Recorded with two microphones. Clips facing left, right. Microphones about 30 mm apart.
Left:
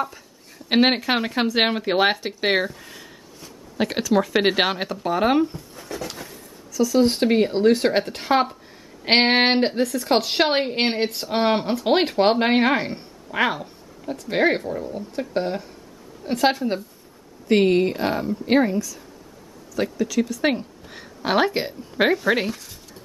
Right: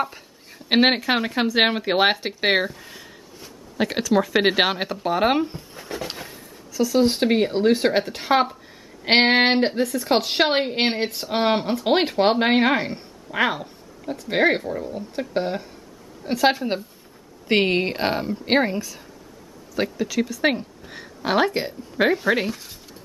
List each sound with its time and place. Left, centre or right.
0.0 s speech: right
5.8 s a sound: right
6.9 s speech: centre
17.5 s speech: right
19.7 s speech: centre
20.2 s speech: centre